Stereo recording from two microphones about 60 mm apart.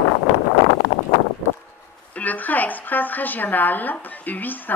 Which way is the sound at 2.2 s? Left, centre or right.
Left.